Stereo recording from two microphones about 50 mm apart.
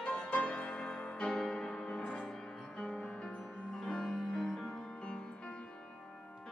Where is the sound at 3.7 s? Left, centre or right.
Centre.